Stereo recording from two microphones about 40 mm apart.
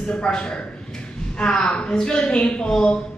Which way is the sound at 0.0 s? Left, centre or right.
Left.